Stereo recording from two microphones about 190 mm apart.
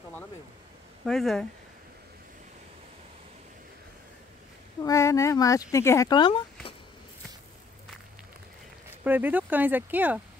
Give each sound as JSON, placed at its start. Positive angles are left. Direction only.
{"t": 1.0, "sound": "speech", "side_deg": 0}
{"t": 4.8, "sound": "speech", "side_deg": 15}
{"t": 9.0, "sound": "speech", "side_deg": -10}